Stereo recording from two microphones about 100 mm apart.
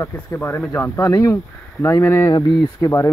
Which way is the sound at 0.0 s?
25° left (ahead or behind).